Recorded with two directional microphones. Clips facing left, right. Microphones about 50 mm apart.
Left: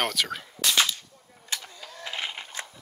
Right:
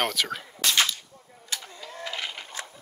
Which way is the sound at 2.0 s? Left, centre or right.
Left.